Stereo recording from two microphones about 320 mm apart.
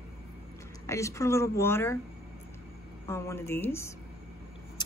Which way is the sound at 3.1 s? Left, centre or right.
Centre.